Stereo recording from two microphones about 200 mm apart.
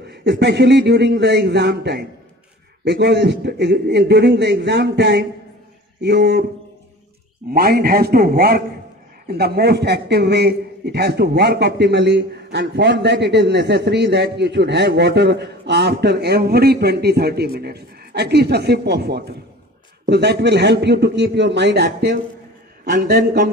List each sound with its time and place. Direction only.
0.0 s a man's voice: 55° right (ahead or behind)
7.5 s a man's voice: 50° right (ahead or behind)